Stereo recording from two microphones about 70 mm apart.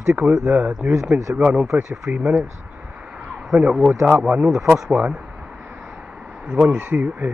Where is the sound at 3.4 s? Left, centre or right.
Centre.